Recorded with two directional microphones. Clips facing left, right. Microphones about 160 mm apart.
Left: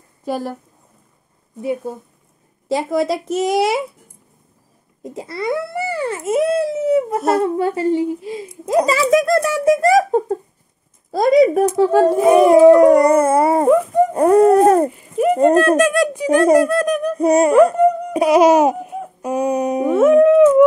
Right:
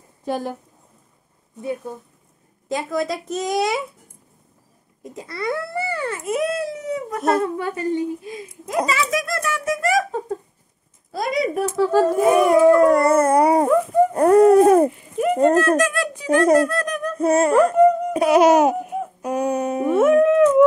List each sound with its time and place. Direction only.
0.2 s a woman's voice: 5° left (ahead or behind)
1.6 s speech: 20° left (ahead or behind)
5.0 s babbling: 25° left (ahead or behind)
7.3 s speech: 25° left (ahead or behind)
8.6 s speech: 35° left (ahead or behind)
11.6 s speech: 15° left (ahead or behind)
14.1 s dog: 5° left (ahead or behind)
15.5 s speech: 20° left (ahead or behind)
17.6 s laughter: centre (ahead or behind)